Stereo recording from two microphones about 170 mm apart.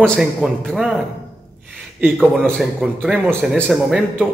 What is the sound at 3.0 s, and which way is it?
A man's voice, 10° right (ahead or behind).